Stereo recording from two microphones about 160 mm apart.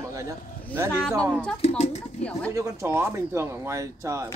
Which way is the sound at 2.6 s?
20° right (ahead or behind).